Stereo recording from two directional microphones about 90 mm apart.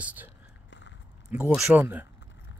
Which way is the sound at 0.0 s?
20° right (ahead or behind).